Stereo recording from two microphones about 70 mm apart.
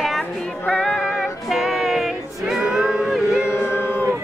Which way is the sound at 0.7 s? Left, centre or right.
Centre.